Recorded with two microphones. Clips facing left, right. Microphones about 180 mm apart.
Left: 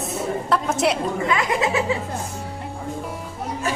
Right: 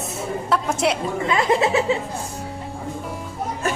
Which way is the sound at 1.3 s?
30° right (ahead or behind).